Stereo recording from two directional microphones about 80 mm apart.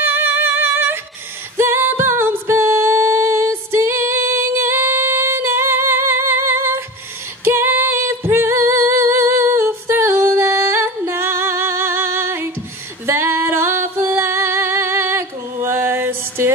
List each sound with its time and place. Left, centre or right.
0.0 s music: right
1.6 s singing: right
7.4 s a capella: right
13.0 s music: right